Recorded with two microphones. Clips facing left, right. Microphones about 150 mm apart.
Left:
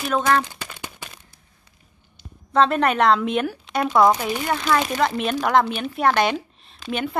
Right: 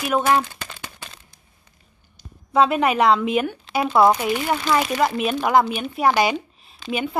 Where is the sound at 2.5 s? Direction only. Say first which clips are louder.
Right 1 dB; 5° right (ahead or behind).